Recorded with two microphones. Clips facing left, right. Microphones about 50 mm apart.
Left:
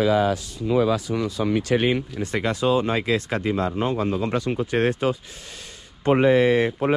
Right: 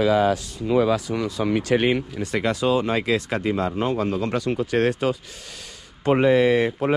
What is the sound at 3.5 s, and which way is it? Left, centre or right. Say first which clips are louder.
Speech: even; right.